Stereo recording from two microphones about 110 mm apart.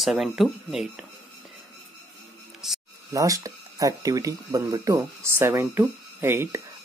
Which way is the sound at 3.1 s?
30° right (ahead or behind).